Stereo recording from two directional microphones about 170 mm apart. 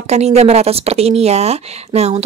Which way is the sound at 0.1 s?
40° right (ahead or behind).